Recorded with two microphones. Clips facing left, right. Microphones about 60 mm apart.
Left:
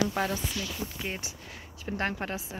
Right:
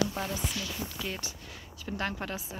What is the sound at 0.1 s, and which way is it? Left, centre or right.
Speech, left.